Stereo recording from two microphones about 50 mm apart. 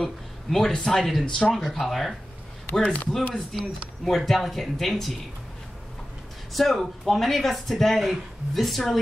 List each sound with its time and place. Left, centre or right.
0.0 s speech: centre
1.5 s speech: centre
2.8 s speech: left
3.3 s speech: centre
6.5 s speech: centre